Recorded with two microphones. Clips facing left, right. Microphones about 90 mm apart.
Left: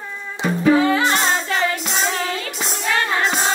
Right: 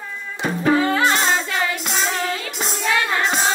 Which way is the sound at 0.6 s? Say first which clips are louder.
Left 2 dB; 45° right (ahead or behind).